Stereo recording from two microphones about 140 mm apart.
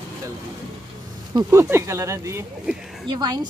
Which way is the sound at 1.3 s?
30° right (ahead or behind).